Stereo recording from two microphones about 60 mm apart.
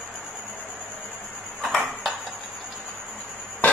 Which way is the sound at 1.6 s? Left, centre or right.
Centre.